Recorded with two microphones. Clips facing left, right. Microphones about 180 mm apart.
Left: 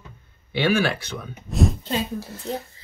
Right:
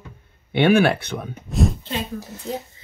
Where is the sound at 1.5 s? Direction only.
Centre (ahead or behind).